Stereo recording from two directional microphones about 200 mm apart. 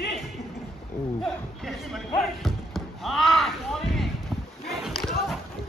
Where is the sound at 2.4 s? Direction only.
Centre (ahead or behind).